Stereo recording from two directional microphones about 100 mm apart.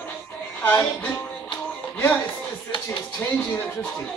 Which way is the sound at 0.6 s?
20° left (ahead or behind).